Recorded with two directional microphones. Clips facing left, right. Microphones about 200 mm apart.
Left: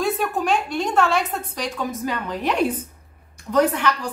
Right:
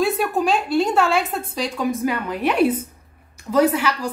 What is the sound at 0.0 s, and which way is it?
A woman's voice, 10° right (ahead or behind).